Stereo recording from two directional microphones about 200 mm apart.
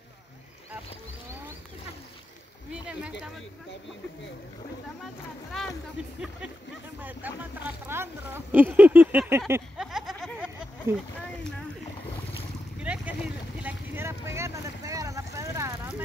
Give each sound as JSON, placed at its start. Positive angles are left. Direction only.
{"t": 2.7, "sound": "speech", "side_deg": -5}
{"t": 5.0, "sound": "speech", "side_deg": 0}
{"t": 7.0, "sound": "speech", "side_deg": -10}
{"t": 9.8, "sound": "a sound", "side_deg": 0}
{"t": 10.9, "sound": "speech", "side_deg": -15}
{"t": 12.8, "sound": "vehicle", "side_deg": -5}